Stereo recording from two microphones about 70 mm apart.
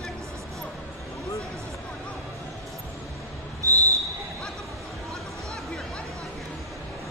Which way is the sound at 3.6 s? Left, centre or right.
Right.